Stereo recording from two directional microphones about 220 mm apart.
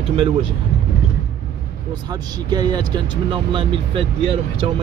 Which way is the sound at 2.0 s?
20° right (ahead or behind).